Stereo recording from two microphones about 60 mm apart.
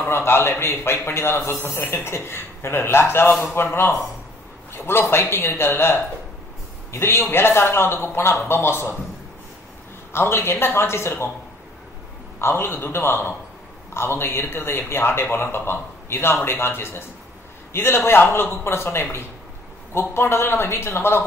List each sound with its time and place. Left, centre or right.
0.0 s a man's voice: left
4.8 s a man's voice: left
10.1 s a man's voice: left
12.4 s a man's voice: left